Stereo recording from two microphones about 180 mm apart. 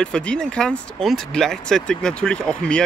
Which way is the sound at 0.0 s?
5° left (ahead or behind).